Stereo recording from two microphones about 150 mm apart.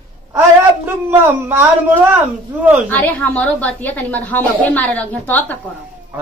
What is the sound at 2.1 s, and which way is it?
Speech, 10° right (ahead or behind).